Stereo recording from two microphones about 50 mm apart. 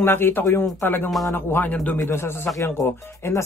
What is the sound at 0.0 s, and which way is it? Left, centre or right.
Speech, left.